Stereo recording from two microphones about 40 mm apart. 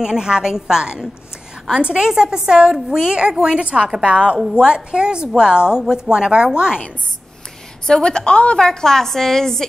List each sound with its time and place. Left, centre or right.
0.0 s a woman's voice: centre
7.8 s a woman's voice: centre
8.5 s a woman's voice: centre